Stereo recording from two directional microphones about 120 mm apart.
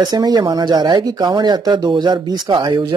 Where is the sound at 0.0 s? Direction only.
30° right (ahead or behind).